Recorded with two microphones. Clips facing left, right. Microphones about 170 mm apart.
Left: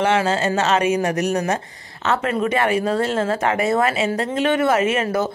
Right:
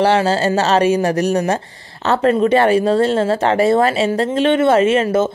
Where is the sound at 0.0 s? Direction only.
35° right (ahead or behind).